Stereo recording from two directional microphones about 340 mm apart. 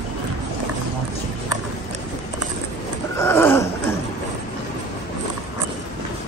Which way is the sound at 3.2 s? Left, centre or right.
Centre.